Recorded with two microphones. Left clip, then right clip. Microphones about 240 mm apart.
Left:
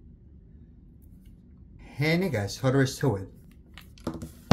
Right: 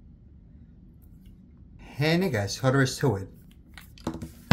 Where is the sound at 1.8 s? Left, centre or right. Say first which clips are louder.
Right 1 dB; centre.